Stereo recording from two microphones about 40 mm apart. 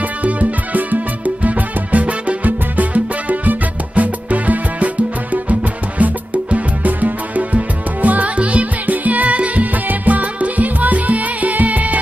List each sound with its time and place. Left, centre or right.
0.2 s music: right